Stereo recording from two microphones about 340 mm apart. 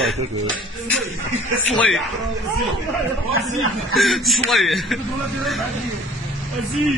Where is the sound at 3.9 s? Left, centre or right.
Centre.